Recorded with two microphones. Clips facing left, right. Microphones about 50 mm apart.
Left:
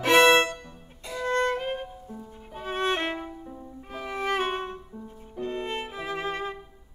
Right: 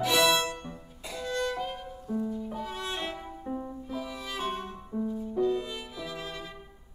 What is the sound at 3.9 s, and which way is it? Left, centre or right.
Music, left.